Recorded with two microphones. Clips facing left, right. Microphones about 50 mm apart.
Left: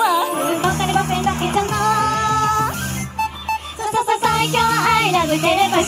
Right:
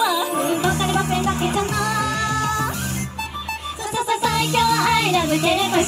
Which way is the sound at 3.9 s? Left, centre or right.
Left.